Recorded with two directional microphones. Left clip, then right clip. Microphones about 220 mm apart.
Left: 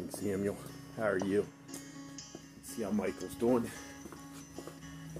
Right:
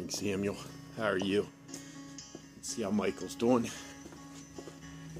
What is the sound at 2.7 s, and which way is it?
Speech, 30° right (ahead or behind).